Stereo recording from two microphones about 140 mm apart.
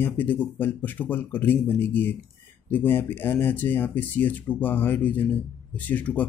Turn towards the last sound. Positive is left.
turn(degrees=10)  # may be behind; listen again after turning